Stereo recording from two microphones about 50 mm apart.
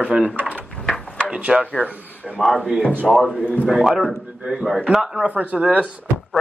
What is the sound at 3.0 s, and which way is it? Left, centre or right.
A man's voice, centre.